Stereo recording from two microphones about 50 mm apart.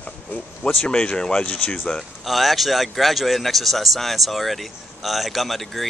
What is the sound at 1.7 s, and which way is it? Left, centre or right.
Speech, centre.